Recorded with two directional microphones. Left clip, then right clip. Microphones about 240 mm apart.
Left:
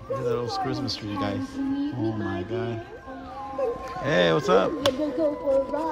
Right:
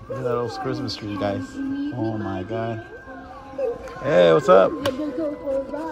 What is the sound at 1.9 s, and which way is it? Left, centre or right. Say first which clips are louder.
Speech: right 2 dB; centre.